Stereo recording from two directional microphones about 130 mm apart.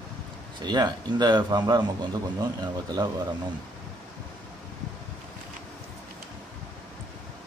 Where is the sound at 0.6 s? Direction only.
35° right (ahead or behind).